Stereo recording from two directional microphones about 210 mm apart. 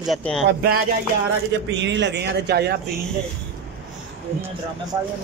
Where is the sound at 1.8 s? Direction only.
55° right (ahead or behind).